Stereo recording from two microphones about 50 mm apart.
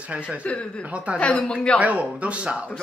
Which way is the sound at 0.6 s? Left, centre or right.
Left.